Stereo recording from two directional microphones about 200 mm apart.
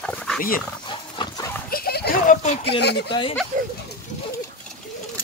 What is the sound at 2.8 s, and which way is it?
Speech, 55° left (ahead or behind).